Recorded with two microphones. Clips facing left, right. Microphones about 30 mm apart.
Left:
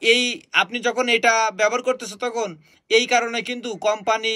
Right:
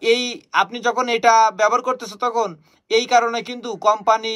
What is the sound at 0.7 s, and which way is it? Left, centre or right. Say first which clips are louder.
Speech: even; centre.